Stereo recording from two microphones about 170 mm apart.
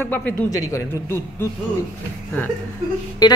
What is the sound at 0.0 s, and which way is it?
Speech, 10° left (ahead or behind).